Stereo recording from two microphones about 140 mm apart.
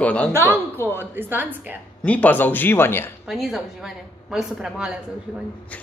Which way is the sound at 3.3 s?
Centre (ahead or behind).